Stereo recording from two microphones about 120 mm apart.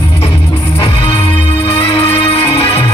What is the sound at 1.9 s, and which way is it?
Music, 50° left (ahead or behind).